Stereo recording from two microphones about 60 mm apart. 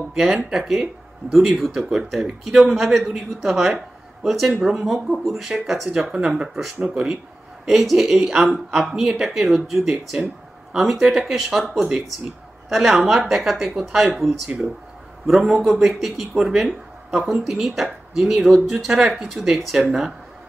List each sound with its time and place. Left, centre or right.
0.1 s speech: centre
1.2 s speech: right
1.6 s speech: centre
7.6 s speech: centre